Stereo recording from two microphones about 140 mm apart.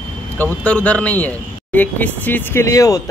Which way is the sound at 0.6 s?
10° left (ahead or behind).